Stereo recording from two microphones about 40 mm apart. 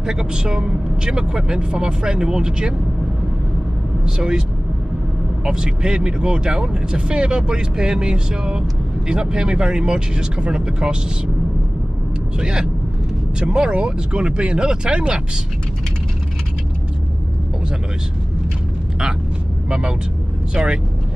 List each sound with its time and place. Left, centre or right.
0.0 s speech: centre
4.0 s speech: centre
5.4 s speech: centre
12.4 s speech: centre
19.7 s speech: centre